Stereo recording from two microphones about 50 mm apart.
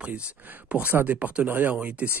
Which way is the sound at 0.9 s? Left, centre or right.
Right.